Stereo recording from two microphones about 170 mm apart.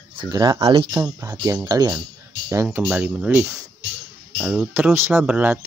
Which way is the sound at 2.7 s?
10° right (ahead or behind).